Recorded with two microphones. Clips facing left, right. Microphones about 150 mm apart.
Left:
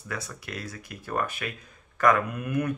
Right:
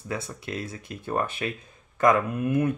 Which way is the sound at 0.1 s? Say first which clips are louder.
Right 4 dB; 25° right (ahead or behind).